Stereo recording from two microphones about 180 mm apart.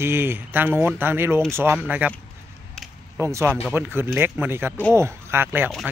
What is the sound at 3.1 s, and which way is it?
Speech, 15° right (ahead or behind).